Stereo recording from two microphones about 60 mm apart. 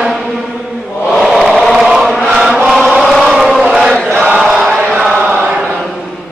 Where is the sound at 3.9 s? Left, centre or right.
Centre.